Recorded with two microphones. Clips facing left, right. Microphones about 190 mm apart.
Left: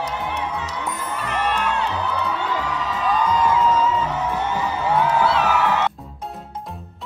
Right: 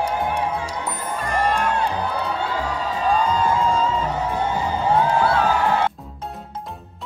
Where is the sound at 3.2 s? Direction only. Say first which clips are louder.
Left 1 dB; 30° right (ahead or behind).